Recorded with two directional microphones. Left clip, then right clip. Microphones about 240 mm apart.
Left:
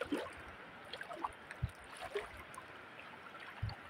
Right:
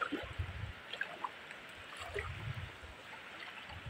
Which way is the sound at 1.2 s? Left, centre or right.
Centre.